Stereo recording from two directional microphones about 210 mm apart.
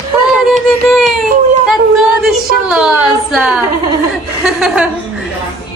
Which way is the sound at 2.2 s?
5° right (ahead or behind).